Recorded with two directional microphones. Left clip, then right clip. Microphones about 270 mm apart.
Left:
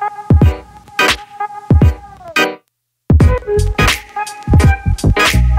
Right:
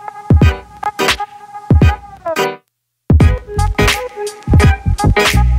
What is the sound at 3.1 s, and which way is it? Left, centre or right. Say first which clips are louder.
Music: left 3 dB; centre.